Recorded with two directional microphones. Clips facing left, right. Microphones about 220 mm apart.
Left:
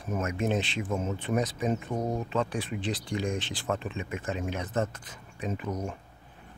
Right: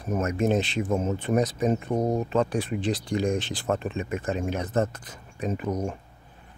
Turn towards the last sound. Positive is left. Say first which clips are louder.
# right 5 dB
turn(degrees=-45)  # may be behind; listen again after turning